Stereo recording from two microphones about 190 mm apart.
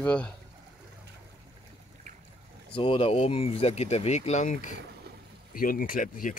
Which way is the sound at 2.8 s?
30° left (ahead or behind).